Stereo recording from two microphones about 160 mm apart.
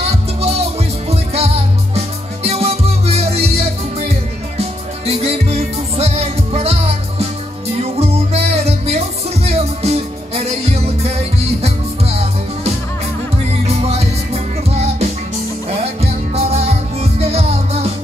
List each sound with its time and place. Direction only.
0.0 s music: 40° right (ahead or behind)